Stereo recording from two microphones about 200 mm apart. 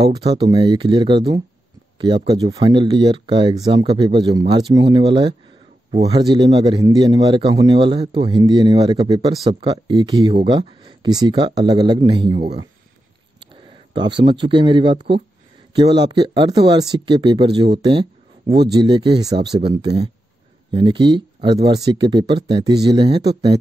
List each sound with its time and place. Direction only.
0.0 s speech: 20° right (ahead or behind)